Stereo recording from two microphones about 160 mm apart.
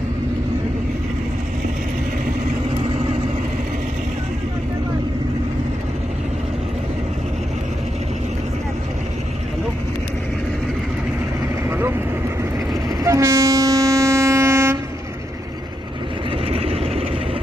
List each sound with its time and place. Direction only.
13.0 s train: 20° right (ahead or behind)
16.5 s vehicle: 40° right (ahead or behind)